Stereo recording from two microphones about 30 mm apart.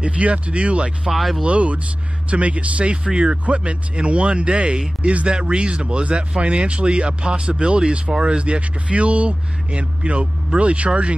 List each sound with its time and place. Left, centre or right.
0.0 s speech: right
1.1 s speech: centre
1.4 s speech: right